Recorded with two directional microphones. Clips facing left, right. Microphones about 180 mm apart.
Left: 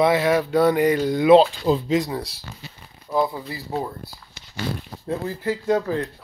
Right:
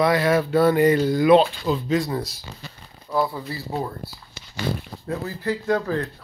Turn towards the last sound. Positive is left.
turn(degrees=20)  # may be behind; listen again after turning